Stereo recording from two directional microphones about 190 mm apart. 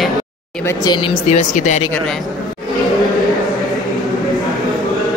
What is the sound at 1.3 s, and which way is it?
Speech, 40° left (ahead or behind).